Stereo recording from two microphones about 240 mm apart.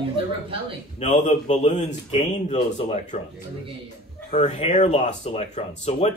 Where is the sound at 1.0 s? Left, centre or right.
Left.